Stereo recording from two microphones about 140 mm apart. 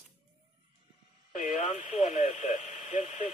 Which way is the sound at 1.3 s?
60° left (ahead or behind).